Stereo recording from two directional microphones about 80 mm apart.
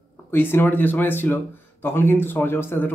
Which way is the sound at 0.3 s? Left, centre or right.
Left.